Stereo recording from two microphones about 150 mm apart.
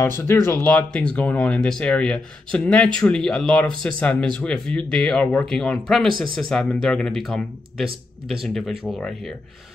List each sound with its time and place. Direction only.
0.2 s speech: 15° left (ahead or behind); by 9.3 s centre (ahead or behind)